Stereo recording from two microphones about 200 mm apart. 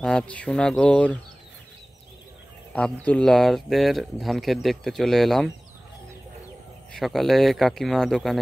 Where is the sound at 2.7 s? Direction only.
5° left (ahead or behind).